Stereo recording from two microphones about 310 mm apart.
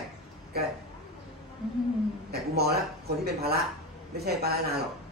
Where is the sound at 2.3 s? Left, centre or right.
Right.